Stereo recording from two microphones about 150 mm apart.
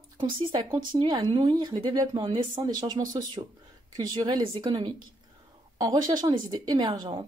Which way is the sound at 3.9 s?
30° right (ahead or behind).